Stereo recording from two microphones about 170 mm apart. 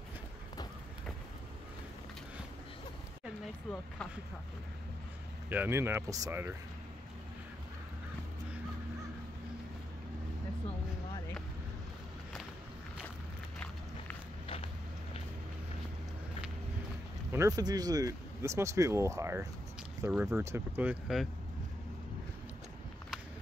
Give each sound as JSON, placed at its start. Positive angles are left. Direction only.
{"t": 5.5, "sound": "speech", "side_deg": -15}
{"t": 14.4, "sound": "a sound", "side_deg": 35}
{"t": 17.3, "sound": "speech", "side_deg": -20}
{"t": 20.1, "sound": "speech", "side_deg": -5}